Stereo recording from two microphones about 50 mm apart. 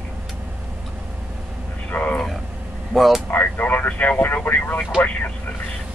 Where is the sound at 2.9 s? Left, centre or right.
Centre.